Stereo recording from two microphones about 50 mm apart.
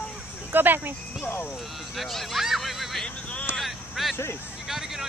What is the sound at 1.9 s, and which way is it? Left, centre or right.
Speech, centre.